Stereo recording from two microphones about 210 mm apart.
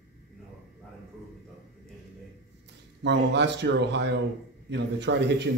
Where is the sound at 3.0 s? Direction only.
55° right (ahead or behind).